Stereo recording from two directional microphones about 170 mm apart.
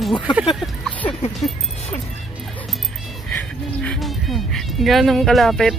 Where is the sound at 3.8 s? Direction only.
5° left (ahead or behind).